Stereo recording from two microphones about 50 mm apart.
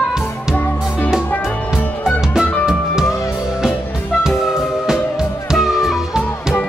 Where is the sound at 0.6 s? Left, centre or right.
Left.